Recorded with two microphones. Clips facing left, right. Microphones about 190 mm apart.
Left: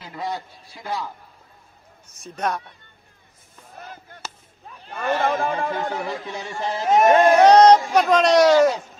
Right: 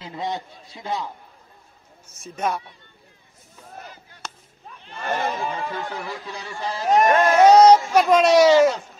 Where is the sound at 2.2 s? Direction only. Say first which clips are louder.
Even; 5° right (ahead or behind).